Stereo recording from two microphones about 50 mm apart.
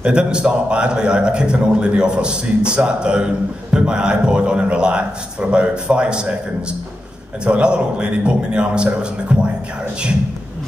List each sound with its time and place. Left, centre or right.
0.0 s a man's voice: centre
7.4 s a man's voice: right